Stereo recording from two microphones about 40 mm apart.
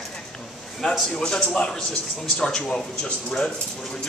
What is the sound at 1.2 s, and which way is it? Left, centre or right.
Speech, centre.